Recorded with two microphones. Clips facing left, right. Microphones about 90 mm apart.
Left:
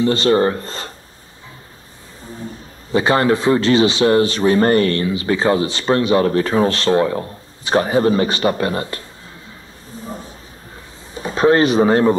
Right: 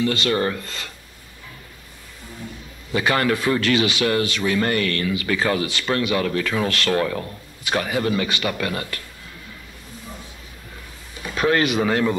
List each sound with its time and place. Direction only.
0.0 s a man's voice: 30° left (ahead or behind)
2.2 s a man's voice: 30° left (ahead or behind)
9.9 s a sound: 35° left (ahead or behind)
11.1 s speech: 30° left (ahead or behind)